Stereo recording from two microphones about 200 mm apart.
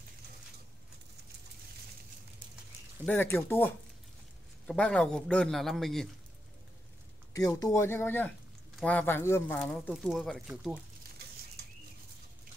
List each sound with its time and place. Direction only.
3.1 s a man's voice: 10° left (ahead or behind)
7.3 s a man's voice: 15° left (ahead or behind); by 10.8 s 5° right (ahead or behind)